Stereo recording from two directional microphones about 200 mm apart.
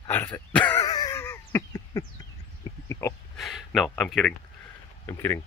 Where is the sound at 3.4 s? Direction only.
Centre (ahead or behind).